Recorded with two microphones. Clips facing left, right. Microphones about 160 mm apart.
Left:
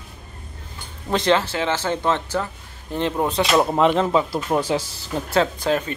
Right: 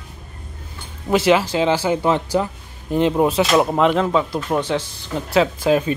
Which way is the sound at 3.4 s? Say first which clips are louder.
Right 1 dB; centre (ahead or behind).